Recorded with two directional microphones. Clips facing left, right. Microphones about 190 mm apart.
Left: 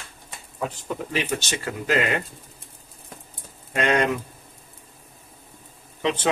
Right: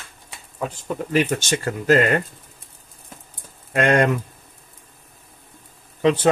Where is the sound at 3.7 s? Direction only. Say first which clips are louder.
Right 4 dB; 50° right (ahead or behind).